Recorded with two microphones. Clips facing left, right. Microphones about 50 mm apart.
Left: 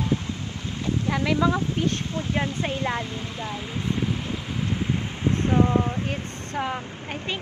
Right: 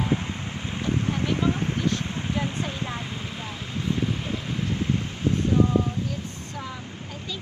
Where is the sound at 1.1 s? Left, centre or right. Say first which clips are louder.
Left 3 dB; left.